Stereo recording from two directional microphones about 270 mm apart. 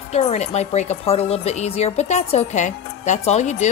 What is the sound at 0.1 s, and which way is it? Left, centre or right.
Speech, left.